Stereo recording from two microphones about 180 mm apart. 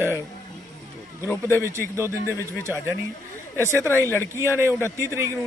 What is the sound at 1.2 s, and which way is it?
Speech, 15° left (ahead or behind).